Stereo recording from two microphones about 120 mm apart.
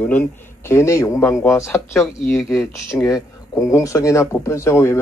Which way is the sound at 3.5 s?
25° left (ahead or behind).